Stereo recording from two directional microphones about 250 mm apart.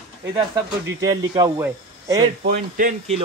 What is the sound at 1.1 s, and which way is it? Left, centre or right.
Speech, centre.